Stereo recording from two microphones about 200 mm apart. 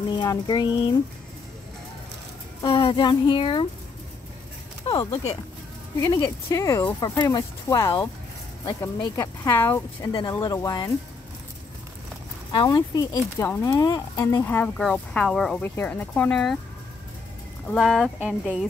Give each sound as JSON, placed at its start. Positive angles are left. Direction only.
{"t": 0.2, "sound": "speech", "side_deg": 20}
{"t": 2.6, "sound": "speech", "side_deg": 25}
{"t": 4.8, "sound": "speech", "side_deg": 20}
{"t": 12.5, "sound": "speech", "side_deg": 20}
{"t": 17.6, "sound": "speech", "side_deg": 0}